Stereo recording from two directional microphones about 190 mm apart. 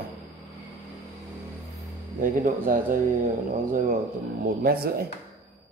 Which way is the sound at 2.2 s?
45° right (ahead or behind).